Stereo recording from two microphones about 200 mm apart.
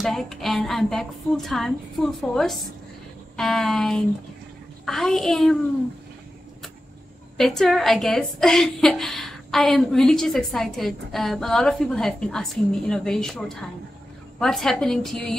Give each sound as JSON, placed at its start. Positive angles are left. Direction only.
{"t": 0.0, "sound": "a woman's voice", "side_deg": 0}
{"t": 7.3, "sound": "a woman's voice", "side_deg": 0}